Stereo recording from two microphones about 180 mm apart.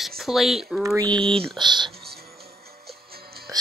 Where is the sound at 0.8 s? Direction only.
20° right (ahead or behind).